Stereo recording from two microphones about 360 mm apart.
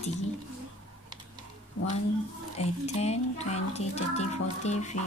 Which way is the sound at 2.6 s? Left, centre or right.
Centre.